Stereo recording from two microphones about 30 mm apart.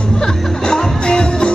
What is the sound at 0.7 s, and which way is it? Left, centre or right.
Music, left.